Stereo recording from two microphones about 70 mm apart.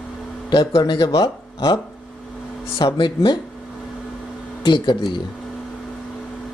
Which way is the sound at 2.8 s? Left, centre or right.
Left.